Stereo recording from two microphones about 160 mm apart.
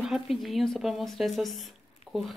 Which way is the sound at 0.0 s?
Centre (ahead or behind).